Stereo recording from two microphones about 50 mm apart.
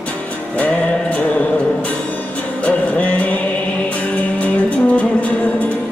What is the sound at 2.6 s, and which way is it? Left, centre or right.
Music, left.